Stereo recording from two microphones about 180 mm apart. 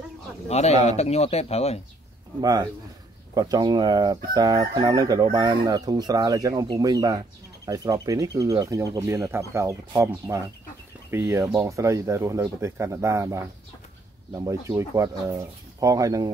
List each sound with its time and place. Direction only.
0.5 s speech: 35° left (ahead or behind)
2.4 s chicken: 20° right (ahead or behind)
7.6 s speech: 20° right (ahead or behind)
14.3 s chicken: 20° right (ahead or behind)